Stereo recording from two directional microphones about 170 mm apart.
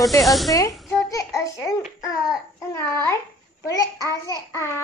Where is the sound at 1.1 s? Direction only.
20° left (ahead or behind).